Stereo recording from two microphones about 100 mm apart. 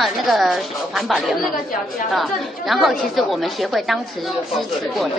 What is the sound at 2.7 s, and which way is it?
A woman's voice, centre (ahead or behind).